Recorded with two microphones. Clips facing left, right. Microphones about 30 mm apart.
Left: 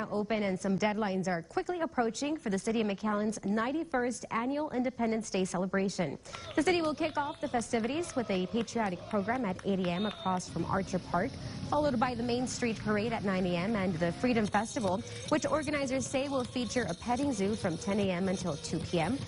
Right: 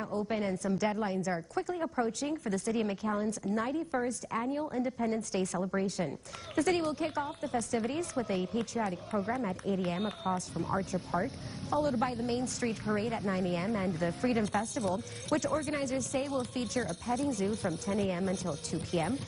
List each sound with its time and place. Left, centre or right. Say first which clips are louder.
0.0 s a woman's voice: left 1 dB; left
2.4 s a woman's voice: left 1 dB; centre
2.7 s a woman's voice: left 1 dB; left
6.7 s a woman's voice: left 1 dB; left